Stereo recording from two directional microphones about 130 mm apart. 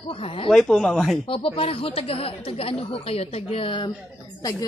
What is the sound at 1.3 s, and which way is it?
A woman's voice, 45° left (ahead or behind).